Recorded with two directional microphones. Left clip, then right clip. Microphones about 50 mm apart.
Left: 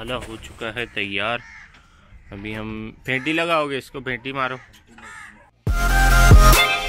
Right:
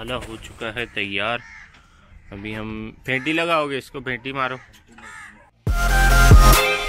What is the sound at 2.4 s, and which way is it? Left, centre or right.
Speech, left.